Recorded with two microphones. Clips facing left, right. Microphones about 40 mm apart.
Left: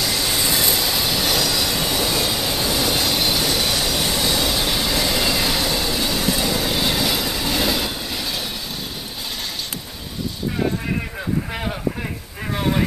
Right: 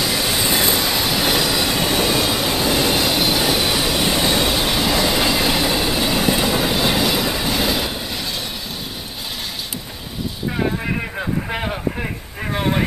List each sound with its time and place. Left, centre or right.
0.0 s vehicle: centre
0.8 s train: centre
6.7 s train: centre
10.6 s vehicle: centre